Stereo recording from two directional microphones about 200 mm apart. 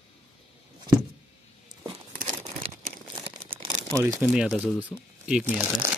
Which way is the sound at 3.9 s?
15° right (ahead or behind).